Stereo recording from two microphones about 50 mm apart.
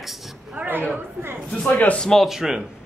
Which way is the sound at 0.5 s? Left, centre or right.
Right.